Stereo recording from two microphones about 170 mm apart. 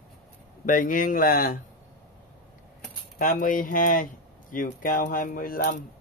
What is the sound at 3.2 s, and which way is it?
Speech, 55° left (ahead or behind).